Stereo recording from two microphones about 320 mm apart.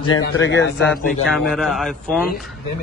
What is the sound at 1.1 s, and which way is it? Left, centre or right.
Speech, centre.